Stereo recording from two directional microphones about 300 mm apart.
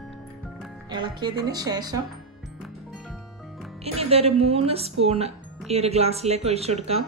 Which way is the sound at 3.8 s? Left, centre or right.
Centre.